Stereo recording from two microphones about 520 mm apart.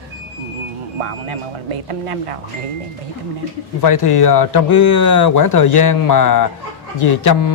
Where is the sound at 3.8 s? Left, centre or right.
Left.